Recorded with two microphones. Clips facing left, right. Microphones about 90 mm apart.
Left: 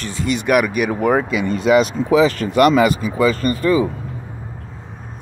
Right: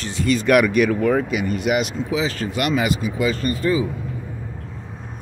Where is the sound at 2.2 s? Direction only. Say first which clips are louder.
Left 9 dB; 55° left (ahead or behind).